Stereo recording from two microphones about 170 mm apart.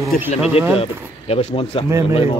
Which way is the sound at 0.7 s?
35° left (ahead or behind).